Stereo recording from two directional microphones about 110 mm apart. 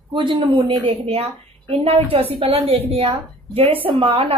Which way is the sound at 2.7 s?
70° right (ahead or behind).